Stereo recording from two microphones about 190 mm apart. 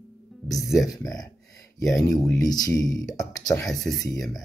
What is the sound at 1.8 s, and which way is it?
Speech, 20° left (ahead or behind).